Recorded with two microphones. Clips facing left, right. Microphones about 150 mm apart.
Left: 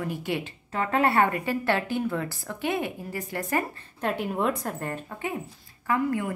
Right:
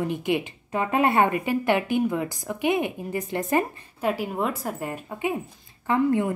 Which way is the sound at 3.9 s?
5° right (ahead or behind).